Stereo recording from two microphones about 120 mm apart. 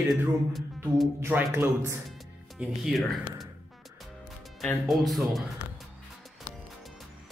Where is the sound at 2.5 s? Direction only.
Centre (ahead or behind).